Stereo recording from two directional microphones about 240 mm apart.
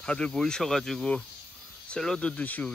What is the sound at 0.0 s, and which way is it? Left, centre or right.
Speech, centre.